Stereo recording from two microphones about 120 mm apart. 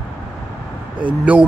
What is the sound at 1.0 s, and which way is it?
Speech, 10° right (ahead or behind).